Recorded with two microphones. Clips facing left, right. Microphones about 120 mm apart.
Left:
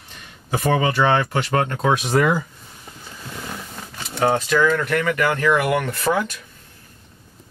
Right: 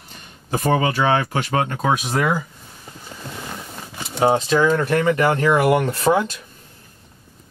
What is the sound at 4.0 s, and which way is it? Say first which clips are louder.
Speech: right 2 dB; 20° right (ahead or behind).